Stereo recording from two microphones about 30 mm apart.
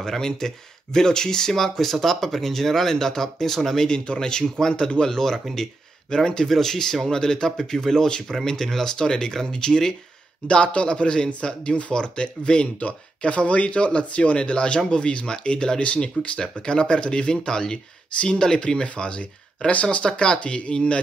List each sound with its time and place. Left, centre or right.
0.0 s speech: centre
4.0 s speech: left
6.4 s speech: centre
10.4 s speech: left
19.7 s speech: left
20.0 s speech: left
20.3 s speech: left